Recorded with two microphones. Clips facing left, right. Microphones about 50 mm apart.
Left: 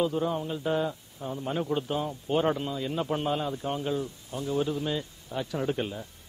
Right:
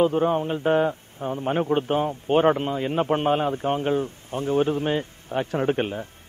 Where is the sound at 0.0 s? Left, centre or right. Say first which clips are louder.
Right 7 dB; right.